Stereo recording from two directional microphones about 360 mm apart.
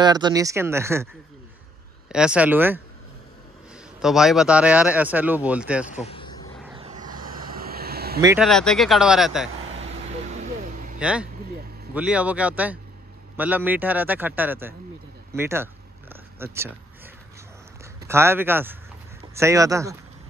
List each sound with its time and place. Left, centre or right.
0.0 s speech: centre
2.0 s speech: centre
4.0 s speech: centre
6.0 s a sound: centre
6.6 s vehicle: centre
7.2 s vehicle: right
8.2 s speech: centre
10.3 s vehicle: right
11.0 s speech: centre
15.3 s cat: centre
18.0 s speech: centre